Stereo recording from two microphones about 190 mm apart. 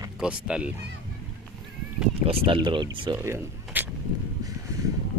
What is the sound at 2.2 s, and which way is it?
Speech, 30° right (ahead or behind).